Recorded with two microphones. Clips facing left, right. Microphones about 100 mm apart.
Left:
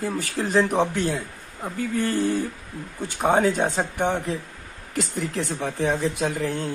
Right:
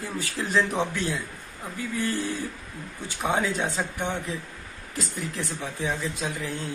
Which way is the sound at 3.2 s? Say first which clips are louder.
Left 6 dB; 50° left (ahead or behind).